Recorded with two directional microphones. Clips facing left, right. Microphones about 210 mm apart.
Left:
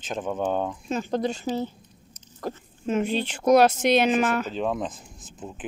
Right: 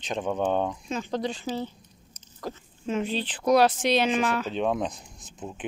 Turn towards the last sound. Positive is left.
turn(degrees=5)  # may be behind; listen again after turning